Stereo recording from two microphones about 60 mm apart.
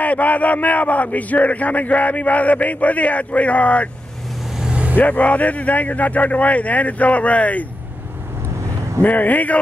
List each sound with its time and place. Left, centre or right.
0.0 s a man's voice: left
4.6 s vehicle: centre
4.9 s a man's voice: left
9.0 s a man's voice: left